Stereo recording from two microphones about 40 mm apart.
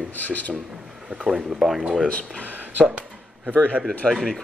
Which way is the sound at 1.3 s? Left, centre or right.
Left.